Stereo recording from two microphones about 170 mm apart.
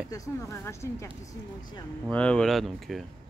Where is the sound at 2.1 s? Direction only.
5° left (ahead or behind).